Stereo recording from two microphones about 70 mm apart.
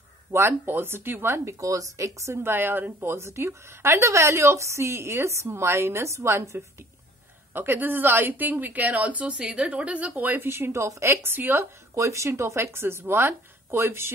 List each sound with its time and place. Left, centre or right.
0.3 s a woman's voice: right
2.4 s a woman's voice: right
7.5 s a woman's voice: right
11.9 s a woman's voice: right